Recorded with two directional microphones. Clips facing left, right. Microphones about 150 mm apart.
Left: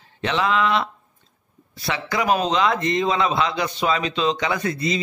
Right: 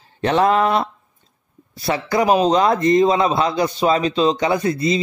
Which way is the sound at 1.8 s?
40° right (ahead or behind).